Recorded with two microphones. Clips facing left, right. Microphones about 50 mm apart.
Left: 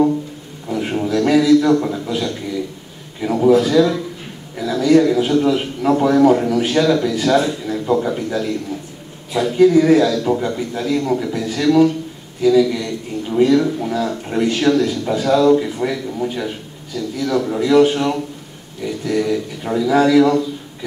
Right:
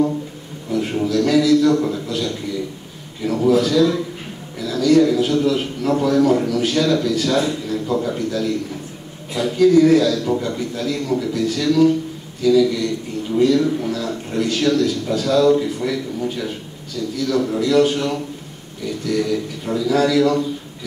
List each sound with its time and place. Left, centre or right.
0.7 s a sound: centre
3.2 s a man's voice: centre
15.4 s a man's voice: centre